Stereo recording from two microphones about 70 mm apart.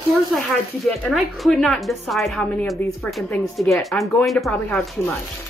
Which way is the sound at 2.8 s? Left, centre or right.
Left.